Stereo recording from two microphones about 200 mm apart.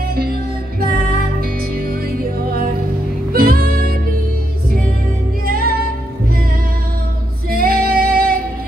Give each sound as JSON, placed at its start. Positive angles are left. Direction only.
{"t": 0.1, "sound": "music", "side_deg": -50}
{"t": 3.3, "sound": "music", "side_deg": -50}
{"t": 5.5, "sound": "music", "side_deg": -50}
{"t": 7.5, "sound": "female singing", "side_deg": -50}